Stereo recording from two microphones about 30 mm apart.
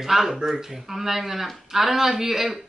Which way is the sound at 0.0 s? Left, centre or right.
Centre.